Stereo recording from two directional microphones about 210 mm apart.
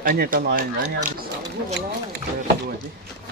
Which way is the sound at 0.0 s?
40° right (ahead or behind).